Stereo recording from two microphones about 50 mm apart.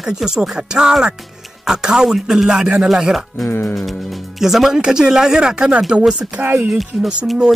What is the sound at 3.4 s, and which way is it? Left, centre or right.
Speech, left.